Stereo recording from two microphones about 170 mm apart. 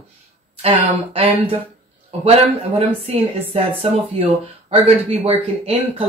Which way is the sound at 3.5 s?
35° right (ahead or behind).